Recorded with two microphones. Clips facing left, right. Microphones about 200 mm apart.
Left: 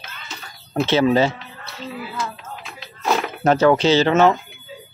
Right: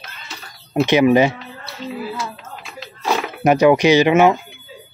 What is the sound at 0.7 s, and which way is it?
Speech, 15° right (ahead or behind).